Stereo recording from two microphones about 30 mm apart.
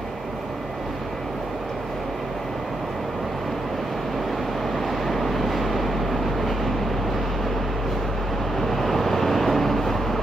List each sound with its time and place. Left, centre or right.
4.7 s vehicle: centre
8.5 s vehicle: centre